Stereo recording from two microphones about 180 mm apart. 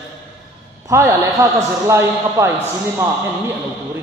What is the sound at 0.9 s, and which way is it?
A man's voice, 15° right (ahead or behind).